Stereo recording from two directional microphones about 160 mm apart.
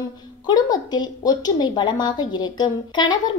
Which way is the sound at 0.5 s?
25° left (ahead or behind).